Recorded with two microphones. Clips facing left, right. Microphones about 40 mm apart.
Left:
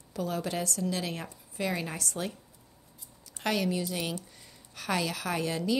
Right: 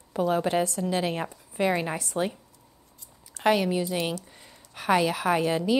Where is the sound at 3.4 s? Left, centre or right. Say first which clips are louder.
Right 6 dB; right.